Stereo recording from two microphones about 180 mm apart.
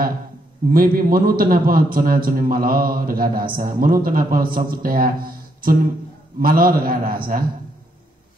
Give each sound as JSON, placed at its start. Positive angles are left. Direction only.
{"t": 0.7, "sound": "a man's voice", "side_deg": -50}